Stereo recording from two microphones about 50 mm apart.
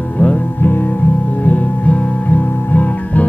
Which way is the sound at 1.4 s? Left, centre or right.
Left.